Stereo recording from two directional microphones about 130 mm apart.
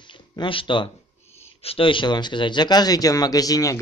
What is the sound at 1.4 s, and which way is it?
Speech, 50° left (ahead or behind).